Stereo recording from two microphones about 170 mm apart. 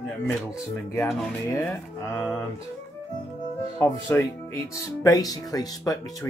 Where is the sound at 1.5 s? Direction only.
15° left (ahead or behind).